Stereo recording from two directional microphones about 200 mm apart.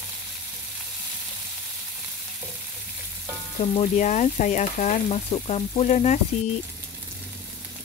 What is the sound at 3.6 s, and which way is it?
Speech, 35° left (ahead or behind).